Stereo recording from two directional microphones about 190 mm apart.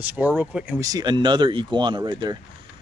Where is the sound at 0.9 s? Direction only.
20° right (ahead or behind).